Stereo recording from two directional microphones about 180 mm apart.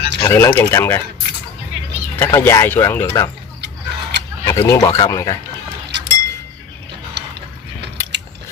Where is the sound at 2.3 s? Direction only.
15° left (ahead or behind).